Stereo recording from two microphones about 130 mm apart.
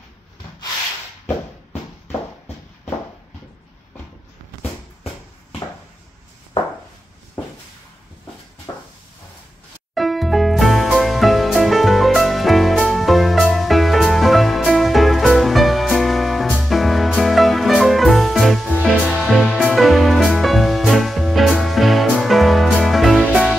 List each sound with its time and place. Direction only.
9.9 s music: centre (ahead or behind)